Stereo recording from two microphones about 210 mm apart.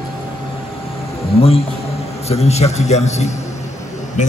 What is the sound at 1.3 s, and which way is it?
A man's voice, 30° left (ahead or behind).